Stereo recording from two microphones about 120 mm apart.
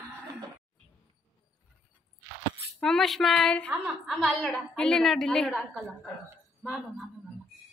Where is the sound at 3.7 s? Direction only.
5° right (ahead or behind).